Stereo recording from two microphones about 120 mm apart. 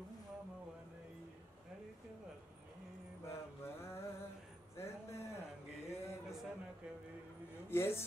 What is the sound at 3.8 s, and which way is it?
A man's voice, 20° left (ahead or behind).